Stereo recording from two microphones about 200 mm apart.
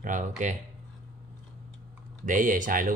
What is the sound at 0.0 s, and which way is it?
Speech, 40° right (ahead or behind).